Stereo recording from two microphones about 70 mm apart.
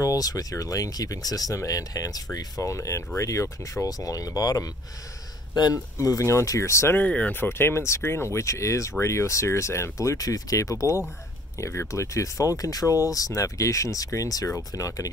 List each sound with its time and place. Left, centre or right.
0.0 s speech: left
2.7 s speech: left
5.9 s speech: left
7.0 s speech: left
7.3 s speech: left